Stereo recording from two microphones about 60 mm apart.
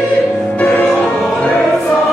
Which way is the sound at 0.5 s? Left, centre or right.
Left.